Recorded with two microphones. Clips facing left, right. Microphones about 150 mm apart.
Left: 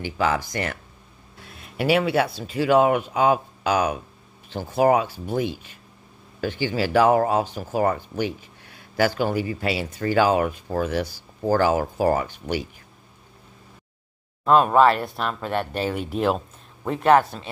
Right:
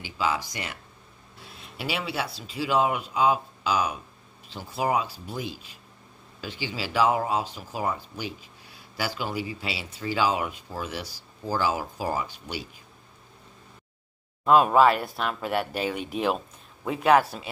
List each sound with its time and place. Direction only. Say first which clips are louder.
0.0 s speech: left 5 dB; 55° left (ahead or behind)
14.4 s speech: left 2 dB; 5° right (ahead or behind)